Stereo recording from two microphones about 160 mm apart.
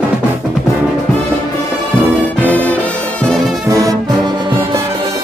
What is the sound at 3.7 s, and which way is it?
Brass instrument, 20° right (ahead or behind).